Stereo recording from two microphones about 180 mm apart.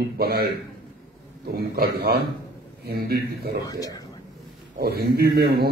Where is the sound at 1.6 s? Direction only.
60° right (ahead or behind).